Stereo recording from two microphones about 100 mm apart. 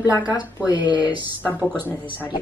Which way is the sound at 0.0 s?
35° left (ahead or behind).